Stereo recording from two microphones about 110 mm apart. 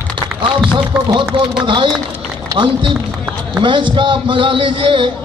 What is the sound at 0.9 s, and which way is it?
Speech, 5° right (ahead or behind).